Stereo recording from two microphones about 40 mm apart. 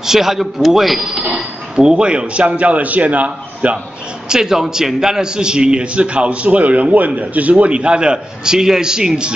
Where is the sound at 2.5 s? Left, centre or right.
Right.